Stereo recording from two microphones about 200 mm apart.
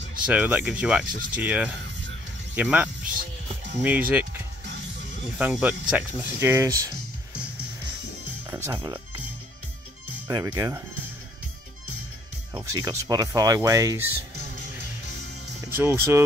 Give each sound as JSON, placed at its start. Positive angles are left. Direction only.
{"t": 0.3, "sound": "speech", "side_deg": -5}
{"t": 5.4, "sound": "speech", "side_deg": -5}
{"t": 8.5, "sound": "speech", "side_deg": -15}
{"t": 8.7, "sound": "speech", "side_deg": -25}
{"t": 10.2, "sound": "speech", "side_deg": -20}
{"t": 12.5, "sound": "speech", "side_deg": -20}
{"t": 15.8, "sound": "speech", "side_deg": -15}